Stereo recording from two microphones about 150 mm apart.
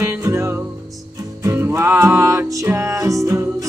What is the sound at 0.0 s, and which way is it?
Music, 20° right (ahead or behind).